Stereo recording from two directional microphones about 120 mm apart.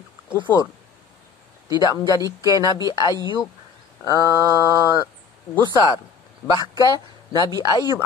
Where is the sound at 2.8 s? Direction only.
30° left (ahead or behind).